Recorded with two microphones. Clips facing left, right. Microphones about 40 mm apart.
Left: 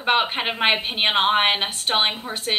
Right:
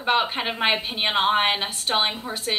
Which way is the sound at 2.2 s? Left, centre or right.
Centre.